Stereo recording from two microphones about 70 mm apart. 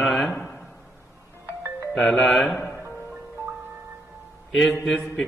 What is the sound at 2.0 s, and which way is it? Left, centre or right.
Speech, centre.